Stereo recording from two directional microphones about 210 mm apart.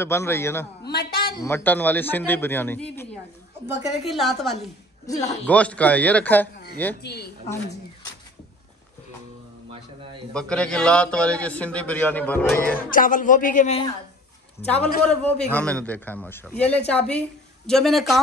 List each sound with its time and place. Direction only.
0.0 s a man's voice: 10° left (ahead or behind)
0.8 s a man's voice: 50° left (ahead or behind)
1.4 s a man's voice: 10° left (ahead or behind)
5.1 s a man's voice: 35° left (ahead or behind)
5.5 s a man's voice: 5° left (ahead or behind)
7.0 s a woman's voice: 50° left (ahead or behind)
9.7 s speech: 25° right (ahead or behind)
10.3 s a man's voice: 5° left (ahead or behind)
12.9 s a man's voice: 40° left (ahead or behind)
14.6 s a man's voice: 5° left (ahead or behind)